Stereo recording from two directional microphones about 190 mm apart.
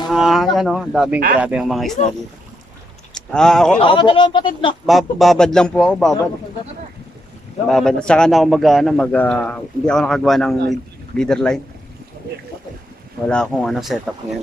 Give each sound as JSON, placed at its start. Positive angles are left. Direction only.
{"t": 0.1, "sound": "a man's voice", "side_deg": 0}
{"t": 3.2, "sound": "speech", "side_deg": 5}
{"t": 3.8, "sound": "speech", "side_deg": 25}
{"t": 4.8, "sound": "a man's voice", "side_deg": 0}
{"t": 7.6, "sound": "a man's voice", "side_deg": 5}
{"t": 13.3, "sound": "a man's voice", "side_deg": 5}